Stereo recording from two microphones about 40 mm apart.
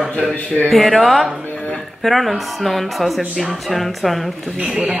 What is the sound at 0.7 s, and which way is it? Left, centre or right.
A woman's voice, centre.